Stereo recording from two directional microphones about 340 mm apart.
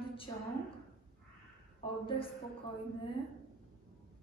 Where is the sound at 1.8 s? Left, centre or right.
Centre.